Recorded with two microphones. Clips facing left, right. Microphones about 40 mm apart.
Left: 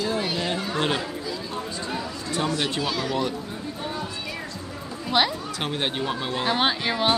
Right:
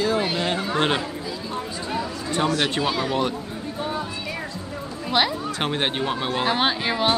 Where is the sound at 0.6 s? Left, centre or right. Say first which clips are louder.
Right 4 dB; right.